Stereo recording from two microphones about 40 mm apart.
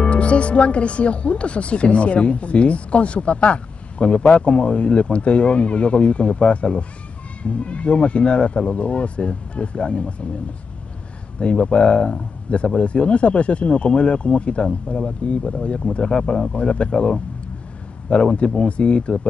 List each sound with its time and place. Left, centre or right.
0.0 s speech: left
11.3 s speech: left